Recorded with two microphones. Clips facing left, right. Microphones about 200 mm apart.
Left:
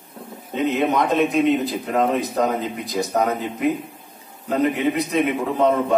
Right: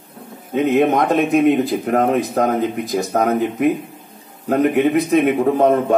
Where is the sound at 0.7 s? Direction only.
55° right (ahead or behind).